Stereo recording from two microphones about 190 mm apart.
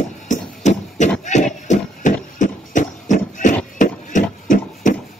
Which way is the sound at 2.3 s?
40° left (ahead or behind).